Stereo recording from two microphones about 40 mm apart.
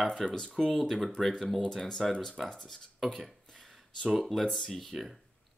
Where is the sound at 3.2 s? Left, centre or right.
Centre.